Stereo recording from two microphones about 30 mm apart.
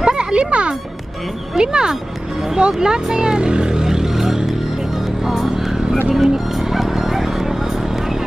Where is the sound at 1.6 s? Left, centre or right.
Right.